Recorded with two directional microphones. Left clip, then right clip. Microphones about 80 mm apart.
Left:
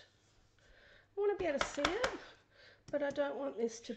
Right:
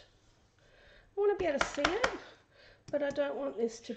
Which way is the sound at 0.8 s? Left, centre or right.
Centre.